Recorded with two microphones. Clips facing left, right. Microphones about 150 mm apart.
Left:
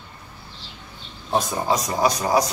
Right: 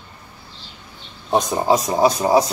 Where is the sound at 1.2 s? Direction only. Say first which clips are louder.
Right 4 dB; 20° right (ahead or behind).